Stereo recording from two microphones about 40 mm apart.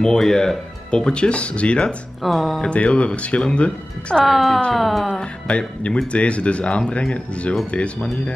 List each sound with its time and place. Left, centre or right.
0.0 s speech: centre
0.8 s speech: left
2.2 s music: centre
2.7 s speech: left
4.2 s music: centre
5.2 s speech: left